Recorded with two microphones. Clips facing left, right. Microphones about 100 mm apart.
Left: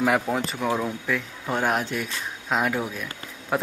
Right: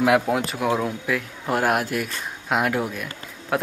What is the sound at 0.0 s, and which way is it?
Speech, 5° right (ahead or behind).